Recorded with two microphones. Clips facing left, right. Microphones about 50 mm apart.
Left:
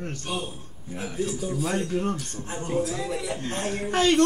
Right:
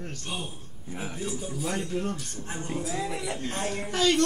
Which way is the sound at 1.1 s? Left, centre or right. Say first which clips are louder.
Left 7 dB; centre.